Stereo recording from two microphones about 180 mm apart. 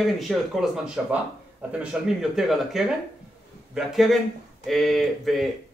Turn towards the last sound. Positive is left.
turn(degrees=0)  # may be behind; listen again after turning